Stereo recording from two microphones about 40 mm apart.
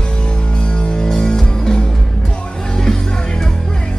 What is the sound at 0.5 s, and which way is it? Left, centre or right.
Music, left.